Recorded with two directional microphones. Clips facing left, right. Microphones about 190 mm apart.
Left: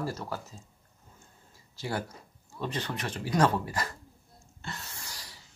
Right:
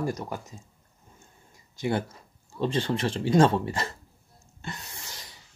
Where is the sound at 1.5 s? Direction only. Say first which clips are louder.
Right 7 dB; 20° right (ahead or behind).